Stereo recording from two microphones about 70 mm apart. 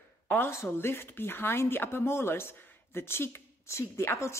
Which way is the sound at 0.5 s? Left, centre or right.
Left.